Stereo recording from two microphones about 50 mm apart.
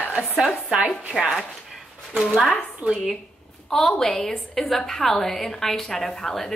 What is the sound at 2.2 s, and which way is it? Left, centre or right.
Speech, centre.